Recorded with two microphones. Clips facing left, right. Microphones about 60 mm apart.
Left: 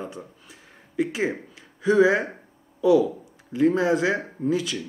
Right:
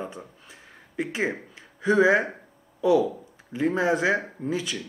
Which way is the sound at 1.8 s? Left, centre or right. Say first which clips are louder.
Left 2 dB; right.